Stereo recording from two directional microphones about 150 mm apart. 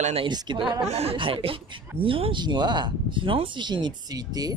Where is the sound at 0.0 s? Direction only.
40° right (ahead or behind).